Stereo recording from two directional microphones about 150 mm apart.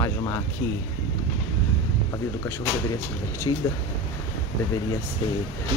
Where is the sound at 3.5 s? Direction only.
30° left (ahead or behind).